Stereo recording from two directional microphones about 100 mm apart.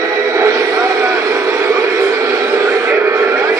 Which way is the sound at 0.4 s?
35° right (ahead or behind).